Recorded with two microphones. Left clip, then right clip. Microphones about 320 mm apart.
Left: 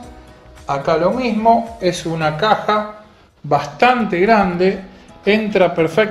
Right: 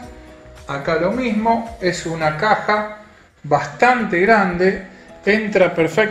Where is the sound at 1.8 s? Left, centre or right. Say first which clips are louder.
Left 2 dB; centre.